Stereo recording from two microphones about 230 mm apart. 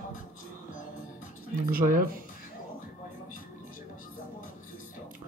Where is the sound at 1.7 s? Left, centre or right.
Right.